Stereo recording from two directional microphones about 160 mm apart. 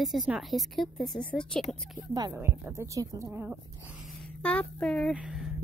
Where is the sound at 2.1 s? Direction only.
20° right (ahead or behind).